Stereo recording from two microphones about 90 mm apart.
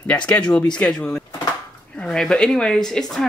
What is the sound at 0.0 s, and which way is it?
Speech, 15° left (ahead or behind).